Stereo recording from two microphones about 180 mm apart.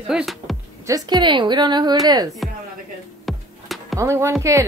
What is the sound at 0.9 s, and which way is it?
A woman's voice, 25° right (ahead or behind).